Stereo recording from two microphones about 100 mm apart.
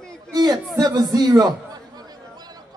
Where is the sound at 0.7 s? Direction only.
40° right (ahead or behind).